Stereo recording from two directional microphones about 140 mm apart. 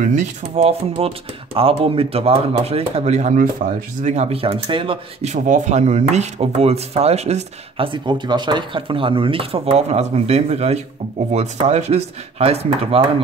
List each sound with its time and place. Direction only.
0.1 s speech: 45° right (ahead or behind)
5.3 s speech: 55° right (ahead or behind)